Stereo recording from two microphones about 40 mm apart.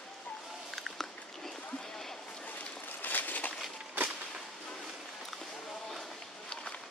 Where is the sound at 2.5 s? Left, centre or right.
Left.